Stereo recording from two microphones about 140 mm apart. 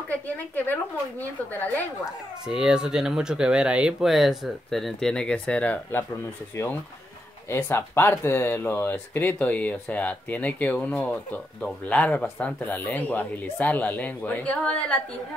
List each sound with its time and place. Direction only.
1.2 s speech: 10° left (ahead or behind)
2.4 s speech: 5° right (ahead or behind)